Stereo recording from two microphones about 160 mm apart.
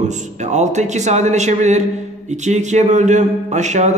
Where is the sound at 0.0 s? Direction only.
45° right (ahead or behind).